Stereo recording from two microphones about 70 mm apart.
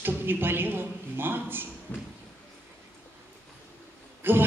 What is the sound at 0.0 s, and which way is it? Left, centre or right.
A man's voice, right.